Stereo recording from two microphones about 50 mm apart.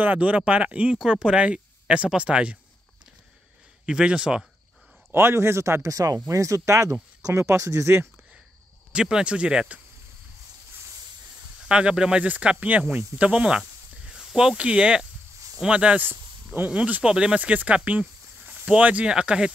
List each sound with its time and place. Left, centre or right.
0.0 s speech: right
0.9 s speech: centre
3.8 s speech: centre
5.1 s speech: right
8.9 s speech: centre
11.6 s speech: centre
12.3 s speech: right
17.4 s speech: right
19.0 s speech: centre